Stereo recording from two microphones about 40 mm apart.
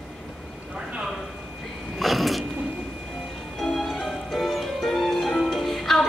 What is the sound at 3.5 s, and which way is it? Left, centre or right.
Music, centre.